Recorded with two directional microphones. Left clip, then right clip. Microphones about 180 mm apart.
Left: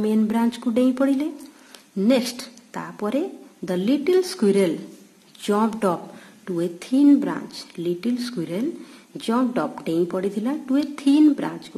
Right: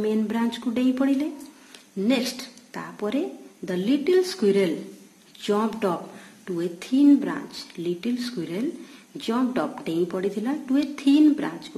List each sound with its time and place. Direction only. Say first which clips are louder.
0.0 s a woman's voice: left 3 dB; 25° left (ahead or behind)